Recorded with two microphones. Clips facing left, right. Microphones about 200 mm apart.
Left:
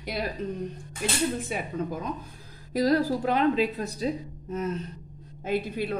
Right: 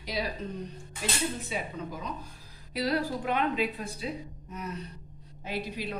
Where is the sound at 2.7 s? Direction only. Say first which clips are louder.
Left 6 dB; 40° left (ahead or behind).